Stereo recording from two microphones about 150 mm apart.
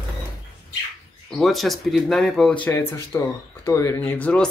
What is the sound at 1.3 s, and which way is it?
Speech, centre (ahead or behind).